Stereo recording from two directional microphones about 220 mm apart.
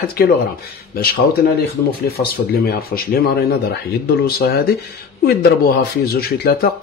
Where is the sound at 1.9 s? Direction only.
45° left (ahead or behind).